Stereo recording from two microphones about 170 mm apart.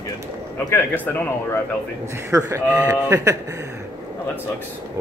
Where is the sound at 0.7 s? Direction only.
10° left (ahead or behind).